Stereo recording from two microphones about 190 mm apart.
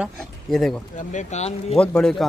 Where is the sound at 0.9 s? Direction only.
40° left (ahead or behind).